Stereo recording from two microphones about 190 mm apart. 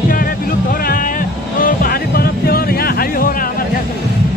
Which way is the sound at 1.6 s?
50° left (ahead or behind).